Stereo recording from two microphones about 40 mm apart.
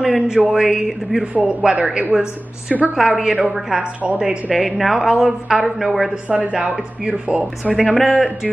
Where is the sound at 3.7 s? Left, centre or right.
Right.